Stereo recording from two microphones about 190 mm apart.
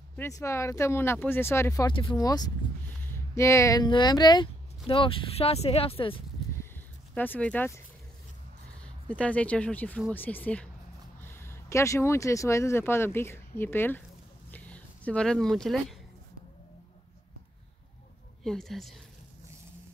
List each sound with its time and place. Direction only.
0.1 s speech: 15° left (ahead or behind); by 6.2 s 30° left (ahead or behind)
7.2 s speech: 10° left (ahead or behind)
8.8 s speech: 5° left (ahead or behind)
18.4 s speech: centre (ahead or behind)